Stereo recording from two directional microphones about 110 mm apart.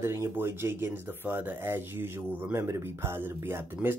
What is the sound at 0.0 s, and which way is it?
Speech, 25° right (ahead or behind).